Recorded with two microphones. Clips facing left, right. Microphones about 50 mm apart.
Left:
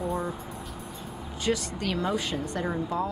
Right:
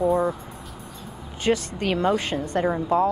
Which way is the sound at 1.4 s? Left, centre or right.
Right.